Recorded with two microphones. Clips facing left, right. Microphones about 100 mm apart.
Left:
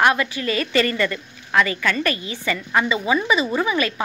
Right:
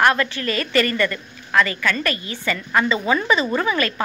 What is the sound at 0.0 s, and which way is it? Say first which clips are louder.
A woman's voice: even; 15° left (ahead or behind).